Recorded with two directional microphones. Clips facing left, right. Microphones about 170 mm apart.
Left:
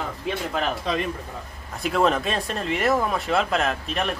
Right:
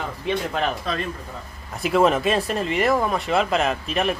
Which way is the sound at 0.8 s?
15° left (ahead or behind).